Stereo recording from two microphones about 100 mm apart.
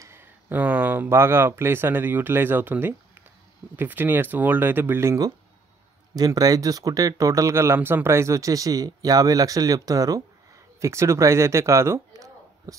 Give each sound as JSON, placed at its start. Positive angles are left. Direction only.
{"t": 0.0, "sound": "speech", "side_deg": -25}
{"t": 6.1, "sound": "speech", "side_deg": -40}